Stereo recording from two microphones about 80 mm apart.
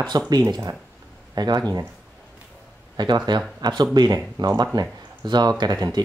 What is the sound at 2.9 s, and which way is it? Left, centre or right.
Speech, right.